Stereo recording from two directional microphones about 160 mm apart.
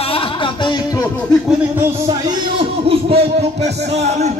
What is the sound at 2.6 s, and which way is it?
Speech, 35° right (ahead or behind).